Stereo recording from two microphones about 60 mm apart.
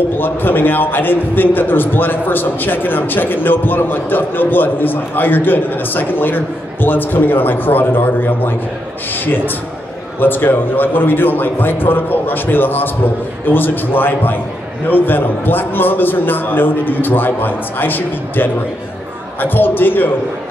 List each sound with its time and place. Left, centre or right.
0.2 s a man's voice: left